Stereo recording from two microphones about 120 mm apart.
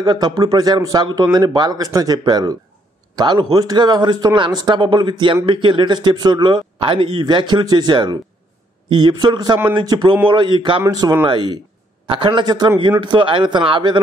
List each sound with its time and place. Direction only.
0.0 s speech: 35° right (ahead or behind)